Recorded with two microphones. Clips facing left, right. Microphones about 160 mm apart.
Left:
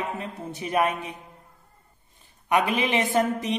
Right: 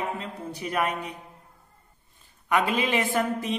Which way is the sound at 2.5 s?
20° left (ahead or behind).